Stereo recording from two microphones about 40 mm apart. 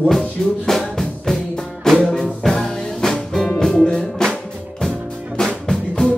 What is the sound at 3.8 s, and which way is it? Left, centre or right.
Music, left.